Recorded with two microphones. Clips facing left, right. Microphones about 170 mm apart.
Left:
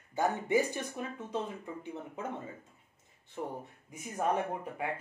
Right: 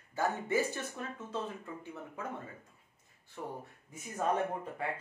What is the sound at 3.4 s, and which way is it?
Speech, 20° left (ahead or behind).